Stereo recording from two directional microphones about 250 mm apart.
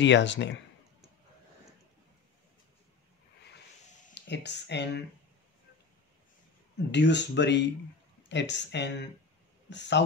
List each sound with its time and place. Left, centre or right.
0.0 s speech: left
4.1 s speech: left
6.9 s speech: left